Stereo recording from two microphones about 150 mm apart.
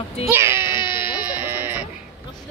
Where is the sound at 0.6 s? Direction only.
30° left (ahead or behind).